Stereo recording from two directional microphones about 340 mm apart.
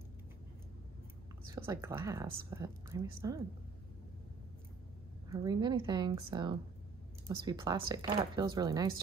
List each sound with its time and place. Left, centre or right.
1.5 s speech: centre
5.3 s speech: centre